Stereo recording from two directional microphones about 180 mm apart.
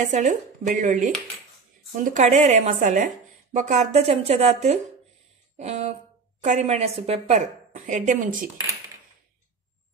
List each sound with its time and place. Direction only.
0.0 s a woman's voice: 40° right (ahead or behind)